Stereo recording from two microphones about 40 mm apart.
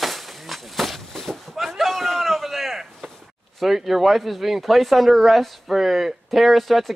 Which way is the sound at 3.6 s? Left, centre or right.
Centre.